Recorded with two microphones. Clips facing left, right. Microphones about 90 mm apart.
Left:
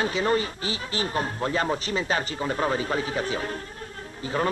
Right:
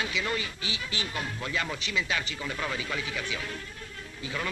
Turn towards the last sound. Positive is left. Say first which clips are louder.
# left 8 dB
turn(degrees=40)  # may be behind; listen again after turning